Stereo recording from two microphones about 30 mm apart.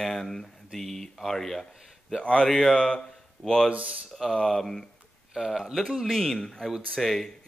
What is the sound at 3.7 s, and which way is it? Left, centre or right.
Speech, right.